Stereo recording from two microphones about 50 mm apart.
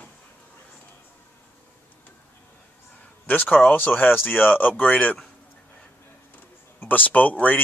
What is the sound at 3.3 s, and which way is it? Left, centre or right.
Speech, left.